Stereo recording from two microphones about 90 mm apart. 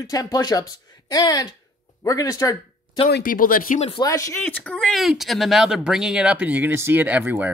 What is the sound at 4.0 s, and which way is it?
Speech, 35° left (ahead or behind).